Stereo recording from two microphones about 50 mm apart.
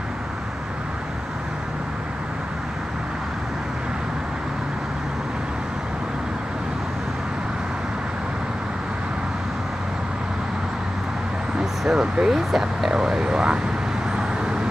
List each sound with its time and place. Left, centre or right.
11.8 s speech: centre